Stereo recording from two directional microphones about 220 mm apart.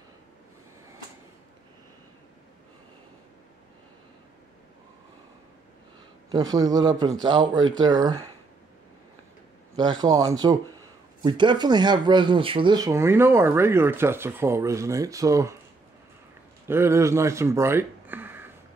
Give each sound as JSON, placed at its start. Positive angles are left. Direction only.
{"t": 6.3, "sound": "a man's voice", "side_deg": -15}
{"t": 9.8, "sound": "speech", "side_deg": -20}
{"t": 16.6, "sound": "speech", "side_deg": -10}